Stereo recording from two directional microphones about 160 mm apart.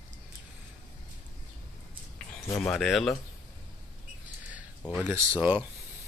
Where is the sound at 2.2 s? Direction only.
5° left (ahead or behind).